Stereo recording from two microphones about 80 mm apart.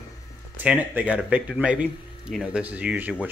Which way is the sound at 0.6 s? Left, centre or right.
Centre.